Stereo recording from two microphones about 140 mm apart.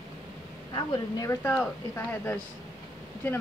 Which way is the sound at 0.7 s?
25° left (ahead or behind).